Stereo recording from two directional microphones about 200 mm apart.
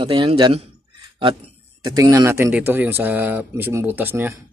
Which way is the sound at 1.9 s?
15° right (ahead or behind).